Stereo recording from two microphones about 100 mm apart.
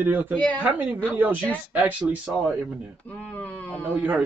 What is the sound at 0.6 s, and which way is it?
Speech, 15° right (ahead or behind).